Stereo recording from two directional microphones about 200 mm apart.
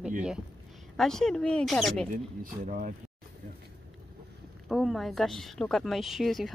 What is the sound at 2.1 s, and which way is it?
Speech, 45° right (ahead or behind).